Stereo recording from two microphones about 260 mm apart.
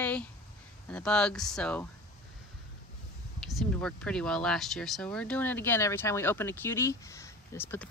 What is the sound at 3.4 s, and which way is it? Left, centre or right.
Speech, centre.